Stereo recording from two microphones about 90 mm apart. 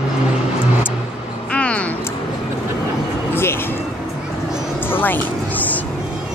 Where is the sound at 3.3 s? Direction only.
25° left (ahead or behind).